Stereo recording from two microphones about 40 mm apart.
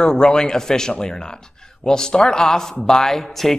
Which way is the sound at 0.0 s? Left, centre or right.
Centre.